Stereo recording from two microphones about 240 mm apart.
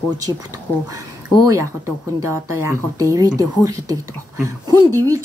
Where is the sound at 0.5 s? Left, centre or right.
Centre.